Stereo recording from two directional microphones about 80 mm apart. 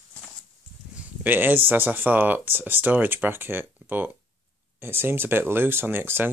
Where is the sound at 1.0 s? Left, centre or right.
Right.